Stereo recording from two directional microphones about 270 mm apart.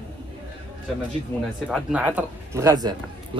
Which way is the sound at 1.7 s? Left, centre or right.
Centre.